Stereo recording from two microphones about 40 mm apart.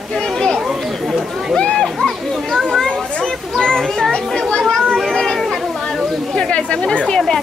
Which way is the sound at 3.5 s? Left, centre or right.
Centre.